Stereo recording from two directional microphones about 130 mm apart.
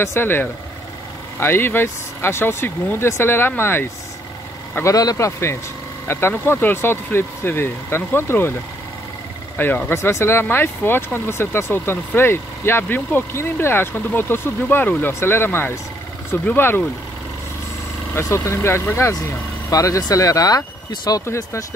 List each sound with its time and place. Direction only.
0.0 s speech: 15° left (ahead or behind)
9.6 s speech: 15° left (ahead or behind)
18.1 s speech: 20° left (ahead or behind)